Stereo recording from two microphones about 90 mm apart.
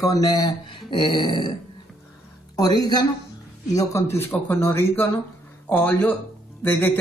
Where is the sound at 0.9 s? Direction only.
60° left (ahead or behind).